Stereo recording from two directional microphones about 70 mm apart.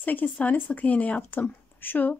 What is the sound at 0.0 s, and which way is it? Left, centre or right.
Speech, left.